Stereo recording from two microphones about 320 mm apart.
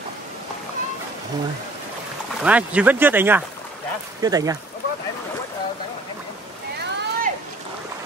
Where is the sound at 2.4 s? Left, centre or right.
Centre.